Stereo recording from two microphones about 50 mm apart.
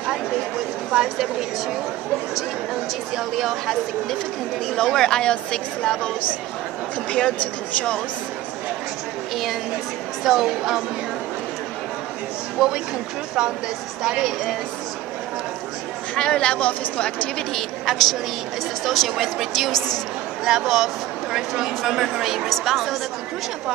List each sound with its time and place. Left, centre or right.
0.9 s speech: centre
2.7 s a woman's voice: centre
4.7 s speech: centre
7.1 s speech: centre
10.2 s speech: centre
12.5 s speech: centre
16.2 s a woman's voice: centre
17.6 s a woman's voice: centre
20.4 s a woman's voice: centre